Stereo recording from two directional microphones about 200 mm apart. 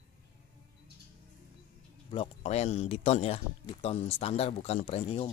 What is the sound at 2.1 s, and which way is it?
Speech, 30° left (ahead or behind).